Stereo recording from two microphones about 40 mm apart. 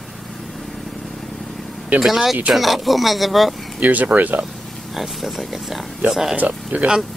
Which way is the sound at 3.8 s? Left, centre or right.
Right.